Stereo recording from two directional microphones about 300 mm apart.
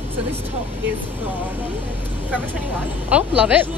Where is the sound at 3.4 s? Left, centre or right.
Centre.